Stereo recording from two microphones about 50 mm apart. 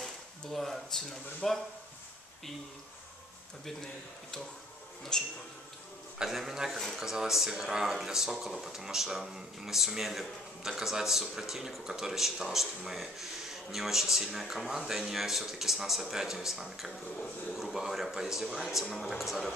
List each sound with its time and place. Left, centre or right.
0.0 s speech: centre
5.1 s a sound: centre
6.1 s speech: centre